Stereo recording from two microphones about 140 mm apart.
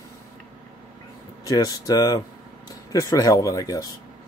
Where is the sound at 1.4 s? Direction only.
25° left (ahead or behind).